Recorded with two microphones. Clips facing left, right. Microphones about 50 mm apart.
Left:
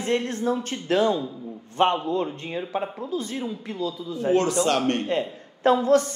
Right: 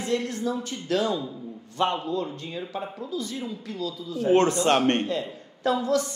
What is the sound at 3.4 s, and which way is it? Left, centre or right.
Speech, left.